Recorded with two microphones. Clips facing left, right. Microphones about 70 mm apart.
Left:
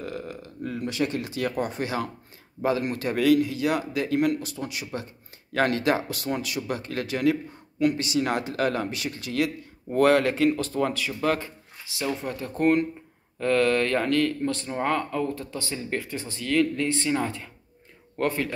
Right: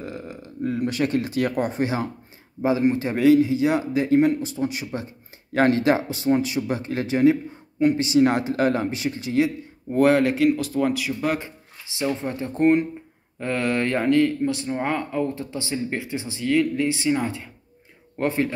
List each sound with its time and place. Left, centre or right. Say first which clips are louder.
0.2 s a sound: even; centre
0.7 s speech: right 4 dB; right
2.6 s speech: right 5 dB; right
9.9 s speech: right 2 dB; centre
18.2 s speech: right 3 dB; right